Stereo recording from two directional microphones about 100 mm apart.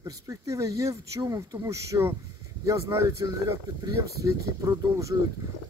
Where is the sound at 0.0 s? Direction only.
30° right (ahead or behind).